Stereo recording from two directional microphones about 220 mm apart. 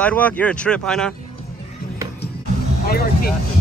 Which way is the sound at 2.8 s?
45° left (ahead or behind).